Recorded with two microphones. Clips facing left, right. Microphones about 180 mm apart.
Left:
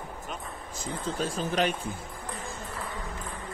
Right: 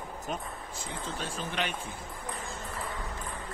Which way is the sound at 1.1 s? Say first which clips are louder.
Left 7 dB; 40° left (ahead or behind).